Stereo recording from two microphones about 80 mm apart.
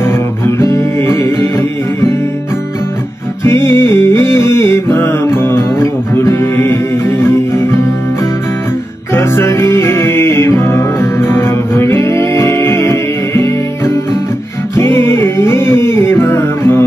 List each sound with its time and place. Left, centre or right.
0.0 s music: left
3.4 s music: left
9.1 s music: left